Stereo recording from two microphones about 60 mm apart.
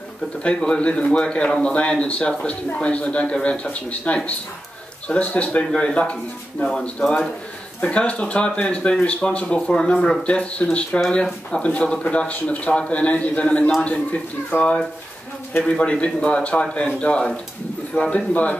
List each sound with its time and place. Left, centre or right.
0.4 s speech: centre
15.6 s speech: centre